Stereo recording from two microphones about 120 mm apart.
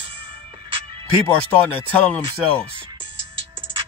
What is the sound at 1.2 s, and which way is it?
Speech, 15° left (ahead or behind).